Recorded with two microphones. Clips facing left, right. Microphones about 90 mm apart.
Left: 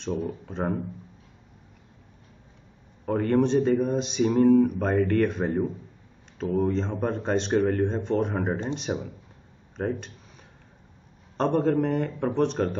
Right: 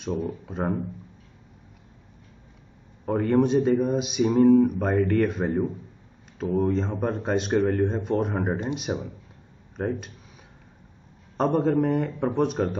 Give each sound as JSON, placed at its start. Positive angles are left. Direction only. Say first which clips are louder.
{"t": 0.0, "sound": "a man's voice", "louder": "right 1 dB", "side_deg": 0}
{"t": 3.1, "sound": "a man's voice", "louder": "right 1 dB", "side_deg": 0}
{"t": 11.3, "sound": "a man's voice", "louder": "right 1 dB", "side_deg": 0}